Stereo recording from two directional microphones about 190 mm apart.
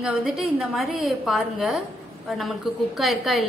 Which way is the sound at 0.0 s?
5° right (ahead or behind).